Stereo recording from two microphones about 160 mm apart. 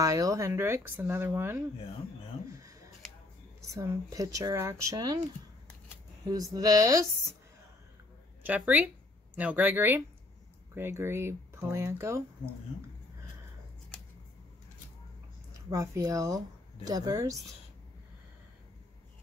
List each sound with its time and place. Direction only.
0.0 s speech: 20° right (ahead or behind)
3.7 s speech: 20° right (ahead or behind)
8.5 s speech: 10° right (ahead or behind)
15.7 s speech: 15° right (ahead or behind)